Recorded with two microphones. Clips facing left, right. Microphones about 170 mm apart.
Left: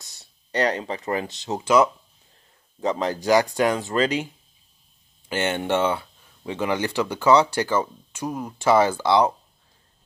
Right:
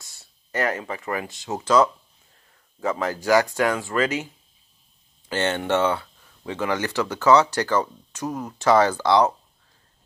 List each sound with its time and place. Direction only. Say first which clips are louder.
0.0 s a sound: left 1 dB; 35° left (ahead or behind)
0.6 s speech: left 2 dB; 20° left (ahead or behind)
1.5 s speech: even; 10° left (ahead or behind)
5.3 s speech: even; 15° left (ahead or behind)